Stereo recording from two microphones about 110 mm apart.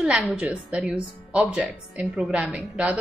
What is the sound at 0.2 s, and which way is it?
Speech, 5° right (ahead or behind).